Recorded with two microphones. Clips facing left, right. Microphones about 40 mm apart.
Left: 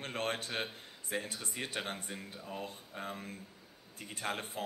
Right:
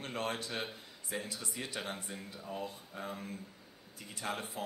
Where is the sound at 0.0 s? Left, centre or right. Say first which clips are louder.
Left 1 dB; left.